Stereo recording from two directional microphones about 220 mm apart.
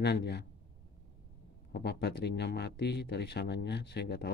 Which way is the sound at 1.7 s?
45° left (ahead or behind).